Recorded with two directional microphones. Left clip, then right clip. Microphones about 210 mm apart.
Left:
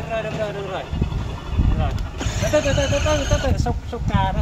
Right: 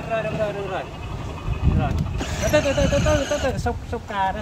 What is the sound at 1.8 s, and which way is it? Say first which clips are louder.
Speech: right 1 dB; 5° left (ahead or behind).